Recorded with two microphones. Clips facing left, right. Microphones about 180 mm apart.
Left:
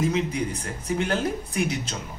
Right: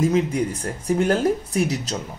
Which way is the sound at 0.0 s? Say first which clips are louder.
Right 5 dB; 45° right (ahead or behind).